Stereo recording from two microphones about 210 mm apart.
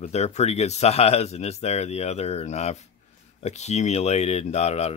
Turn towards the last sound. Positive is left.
turn(degrees=30)  # may be behind; listen again after turning